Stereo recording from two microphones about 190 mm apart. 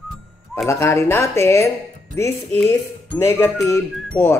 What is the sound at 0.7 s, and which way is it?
Speech, 15° left (ahead or behind).